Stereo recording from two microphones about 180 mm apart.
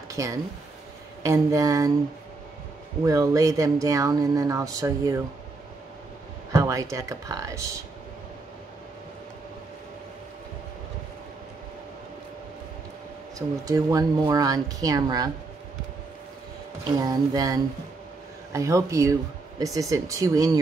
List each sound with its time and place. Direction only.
0.1 s speech: 20° right (ahead or behind)
3.1 s speech: 20° right (ahead or behind)
6.5 s speech: 20° right (ahead or behind)
13.7 s speech: 20° right (ahead or behind)
17.0 s speech: 20° right (ahead or behind)